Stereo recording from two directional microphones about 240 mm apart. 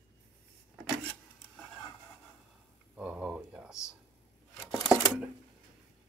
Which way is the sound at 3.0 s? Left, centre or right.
Centre.